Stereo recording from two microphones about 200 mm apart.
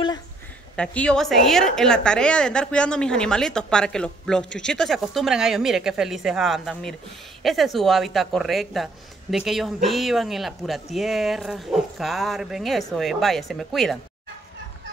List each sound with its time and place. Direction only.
0.7 s speech: 5° left (ahead or behind)